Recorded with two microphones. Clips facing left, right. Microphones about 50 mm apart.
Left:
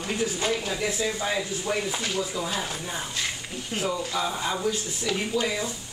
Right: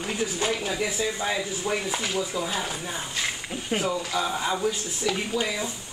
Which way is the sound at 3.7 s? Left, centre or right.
Right.